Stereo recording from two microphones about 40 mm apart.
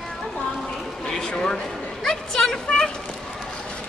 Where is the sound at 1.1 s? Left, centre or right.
Centre.